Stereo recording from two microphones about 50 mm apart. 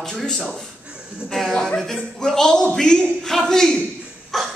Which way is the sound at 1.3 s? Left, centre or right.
Centre.